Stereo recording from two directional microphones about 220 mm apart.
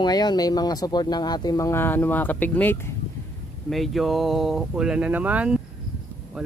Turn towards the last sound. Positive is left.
turn(degrees=-5)  # may be behind; listen again after turning